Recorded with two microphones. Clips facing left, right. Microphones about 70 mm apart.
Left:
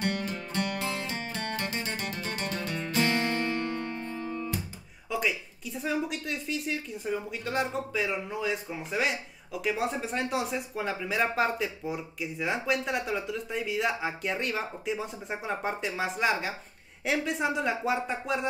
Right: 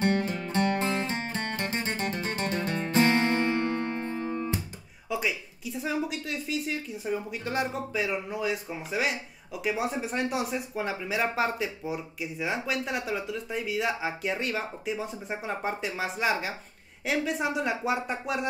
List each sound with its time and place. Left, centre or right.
0.0 s music: right
5.1 s speech: centre